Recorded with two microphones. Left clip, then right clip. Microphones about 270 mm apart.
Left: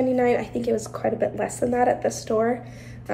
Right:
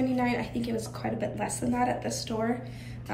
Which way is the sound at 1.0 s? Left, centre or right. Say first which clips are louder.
Left 8 dB; left.